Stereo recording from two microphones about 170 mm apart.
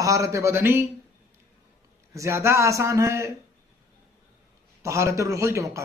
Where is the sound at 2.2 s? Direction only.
15° right (ahead or behind).